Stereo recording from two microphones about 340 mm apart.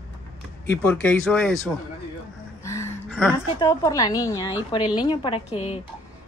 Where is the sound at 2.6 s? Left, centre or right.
Centre.